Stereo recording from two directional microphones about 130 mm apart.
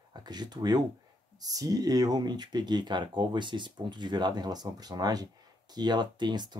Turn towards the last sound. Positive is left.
turn(degrees=-35)  # may be behind; listen again after turning